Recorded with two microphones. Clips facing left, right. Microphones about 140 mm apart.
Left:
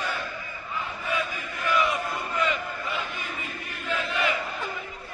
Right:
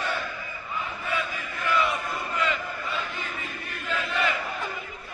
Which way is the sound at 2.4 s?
15° left (ahead or behind).